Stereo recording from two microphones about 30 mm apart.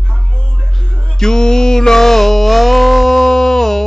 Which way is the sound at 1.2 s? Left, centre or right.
Centre.